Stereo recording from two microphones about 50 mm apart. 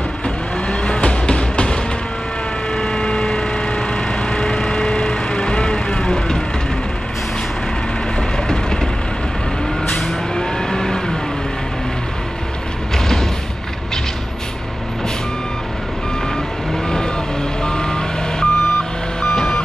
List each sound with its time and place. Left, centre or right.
0.7 s music: left
2.7 s vehicle: centre
8.2 s vehicle: centre
10.0 s vehicle: centre
12.9 s music: centre
16.8 s reversing beeps: centre